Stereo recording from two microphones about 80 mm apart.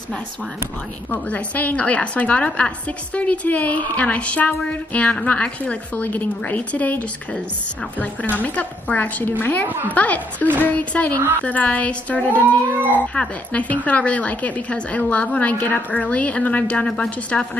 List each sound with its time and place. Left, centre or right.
1.1 s a woman's voice: centre
9.7 s a woman's voice: right
9.9 s a woman's voice: centre